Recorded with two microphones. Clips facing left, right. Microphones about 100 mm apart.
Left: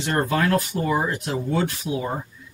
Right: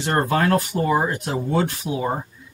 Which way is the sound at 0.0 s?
40° right (ahead or behind).